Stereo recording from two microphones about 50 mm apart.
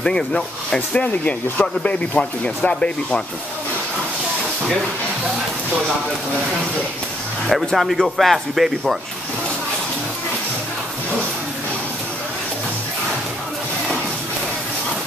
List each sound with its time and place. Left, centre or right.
0.0 s speech: centre
0.7 s speech: left
7.5 s speech: centre